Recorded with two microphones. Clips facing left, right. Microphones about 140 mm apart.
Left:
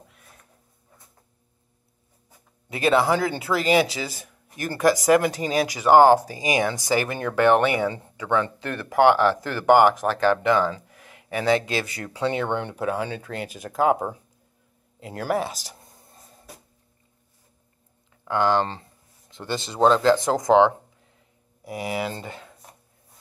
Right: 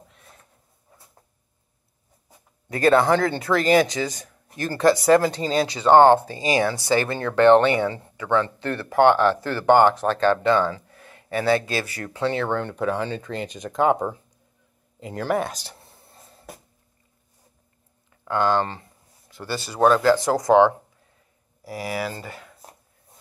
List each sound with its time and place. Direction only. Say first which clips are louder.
2.7 s speech: right 3 dB; 10° left (ahead or behind)
18.3 s speech: even; 15° left (ahead or behind)